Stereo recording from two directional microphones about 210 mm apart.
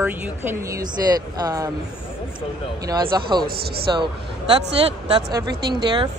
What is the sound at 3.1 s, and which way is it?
A woman's voice, 20° right (ahead or behind).